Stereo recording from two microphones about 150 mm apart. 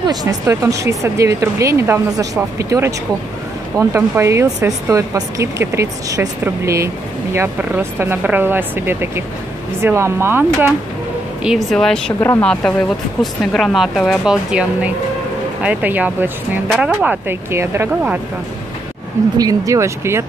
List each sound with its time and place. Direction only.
0.0 s speech: 25° right (ahead or behind)
11.4 s speech: centre (ahead or behind)
12.2 s speech: 15° left (ahead or behind)
12.4 s speech: 5° left (ahead or behind); by 18.2 s 15° right (ahead or behind)
19.3 s speech: 25° right (ahead or behind)